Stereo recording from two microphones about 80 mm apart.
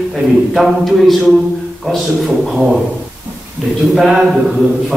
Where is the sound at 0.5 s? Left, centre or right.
Centre.